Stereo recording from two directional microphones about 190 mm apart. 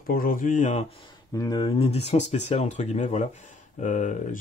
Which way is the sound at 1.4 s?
25° left (ahead or behind).